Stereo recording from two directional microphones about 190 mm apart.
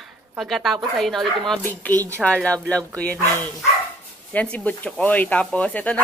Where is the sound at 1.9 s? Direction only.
20° right (ahead or behind).